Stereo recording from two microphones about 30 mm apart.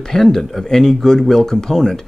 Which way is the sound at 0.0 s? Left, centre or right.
Centre.